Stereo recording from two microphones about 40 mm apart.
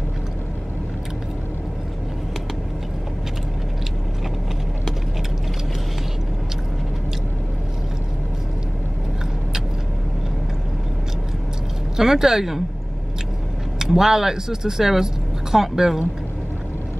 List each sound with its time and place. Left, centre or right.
12.0 s speech: centre
13.7 s speech: centre